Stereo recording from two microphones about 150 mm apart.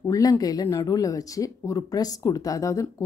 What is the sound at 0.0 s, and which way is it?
Speech, 20° left (ahead or behind).